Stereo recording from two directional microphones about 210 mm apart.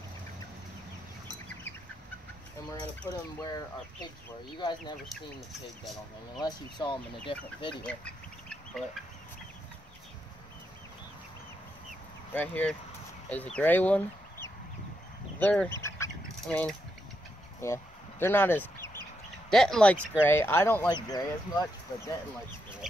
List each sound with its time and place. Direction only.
2.7 s speech: 15° left (ahead or behind)
4.6 s speech: 20° left (ahead or behind)
6.4 s speech: 20° left (ahead or behind)
7.8 s duck: 5° left (ahead or behind)
12.4 s speech: 5° left (ahead or behind)
15.3 s a sound: 5° left (ahead or behind)
18.2 s speech: 10° left (ahead or behind)